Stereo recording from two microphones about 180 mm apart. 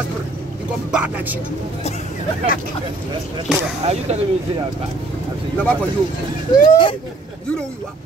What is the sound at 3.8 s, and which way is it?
Speech, 35° right (ahead or behind).